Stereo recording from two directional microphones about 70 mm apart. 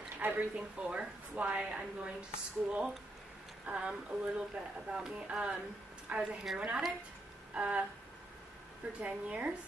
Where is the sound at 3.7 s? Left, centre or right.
Centre.